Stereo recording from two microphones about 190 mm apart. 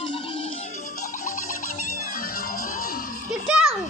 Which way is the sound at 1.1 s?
45° left (ahead or behind).